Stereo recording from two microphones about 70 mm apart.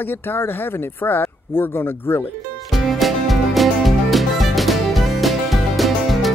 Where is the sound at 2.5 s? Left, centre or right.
Centre.